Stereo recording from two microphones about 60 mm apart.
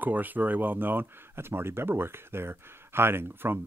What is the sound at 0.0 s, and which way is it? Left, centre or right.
Speech, right.